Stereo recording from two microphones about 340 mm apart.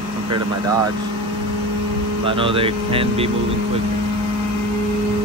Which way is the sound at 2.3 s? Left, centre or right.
Centre.